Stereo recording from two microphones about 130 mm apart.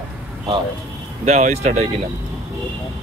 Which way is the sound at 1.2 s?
60° right (ahead or behind).